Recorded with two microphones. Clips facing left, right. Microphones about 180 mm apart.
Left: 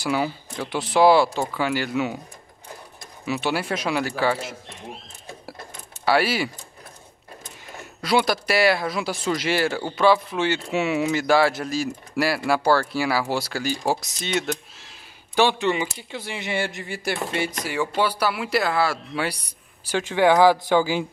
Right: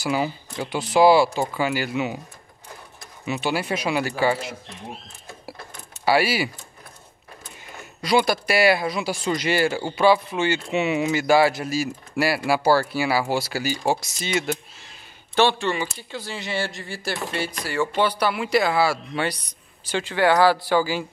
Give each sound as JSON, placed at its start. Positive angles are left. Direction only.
{"t": 0.0, "sound": "speech", "side_deg": 0}
{"t": 3.3, "sound": "speech", "side_deg": 0}
{"t": 6.0, "sound": "speech", "side_deg": -5}
{"t": 8.0, "sound": "speech", "side_deg": 0}
{"t": 15.3, "sound": "speech", "side_deg": 15}
{"t": 19.9, "sound": "speech", "side_deg": 15}